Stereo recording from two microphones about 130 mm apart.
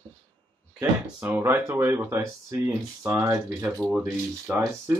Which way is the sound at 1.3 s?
20° right (ahead or behind).